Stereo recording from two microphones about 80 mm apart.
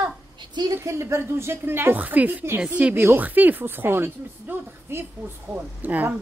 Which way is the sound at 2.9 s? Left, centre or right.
Right.